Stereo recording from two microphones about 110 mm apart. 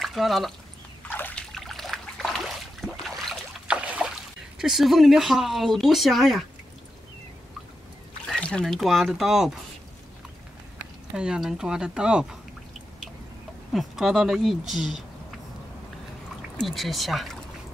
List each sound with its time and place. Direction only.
0.0 s speech: centre (ahead or behind)
1.0 s trickle: 15° left (ahead or behind)
1.5 s trickle: centre (ahead or behind)
3.6 s speech: 10° right (ahead or behind)
8.4 s speech: 10° left (ahead or behind)
11.1 s speech: 5° right (ahead or behind)
13.7 s speech: 5° right (ahead or behind)
16.5 s speech: centre (ahead or behind)